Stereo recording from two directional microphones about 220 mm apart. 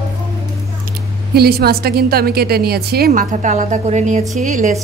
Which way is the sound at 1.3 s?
45° right (ahead or behind).